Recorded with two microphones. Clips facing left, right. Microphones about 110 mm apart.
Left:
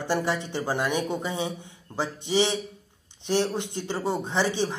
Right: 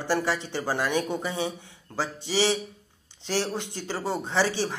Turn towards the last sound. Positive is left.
turn(degrees=20)  # may be behind; listen again after turning